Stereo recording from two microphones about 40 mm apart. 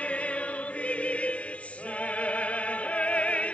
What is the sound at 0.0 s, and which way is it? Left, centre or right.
Choir, left.